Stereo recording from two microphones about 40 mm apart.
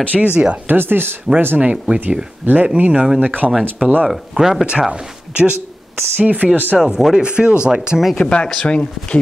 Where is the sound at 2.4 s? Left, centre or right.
Right.